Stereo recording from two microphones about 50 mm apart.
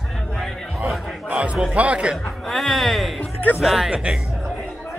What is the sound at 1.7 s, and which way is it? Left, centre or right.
Speech, right.